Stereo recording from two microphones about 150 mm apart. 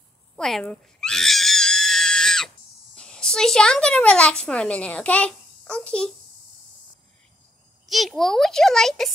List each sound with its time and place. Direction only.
0.4 s screaming: 5° left (ahead or behind)
3.0 s speech: 5° left (ahead or behind)
7.8 s speech: centre (ahead or behind)